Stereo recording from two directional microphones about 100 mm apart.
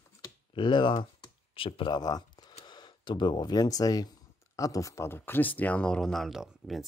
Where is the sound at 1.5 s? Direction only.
60° left (ahead or behind).